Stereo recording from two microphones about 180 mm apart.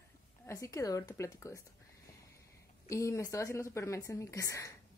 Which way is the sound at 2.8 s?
15° left (ahead or behind).